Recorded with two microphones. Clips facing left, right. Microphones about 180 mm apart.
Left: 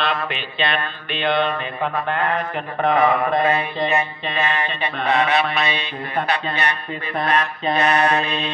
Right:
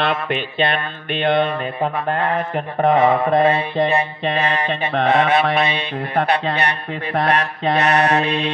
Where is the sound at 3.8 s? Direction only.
60° right (ahead or behind).